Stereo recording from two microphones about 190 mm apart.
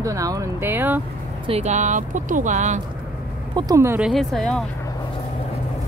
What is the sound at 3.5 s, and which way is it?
Speech, 15° right (ahead or behind).